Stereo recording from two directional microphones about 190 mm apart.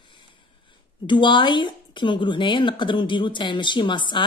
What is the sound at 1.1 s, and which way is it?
A woman's voice, 25° left (ahead or behind).